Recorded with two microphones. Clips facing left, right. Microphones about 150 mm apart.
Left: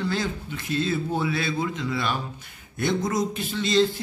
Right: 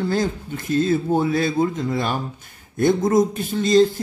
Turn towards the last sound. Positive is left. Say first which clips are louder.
# right 6 dB
turn(degrees=-45)  # may be behind; listen again after turning